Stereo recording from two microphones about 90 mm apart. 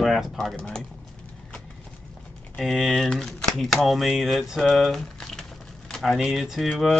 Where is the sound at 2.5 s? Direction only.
Centre (ahead or behind).